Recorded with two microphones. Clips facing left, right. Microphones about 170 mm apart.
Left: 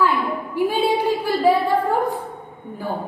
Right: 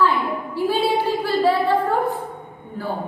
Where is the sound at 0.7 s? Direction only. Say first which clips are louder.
Even; 15° left (ahead or behind).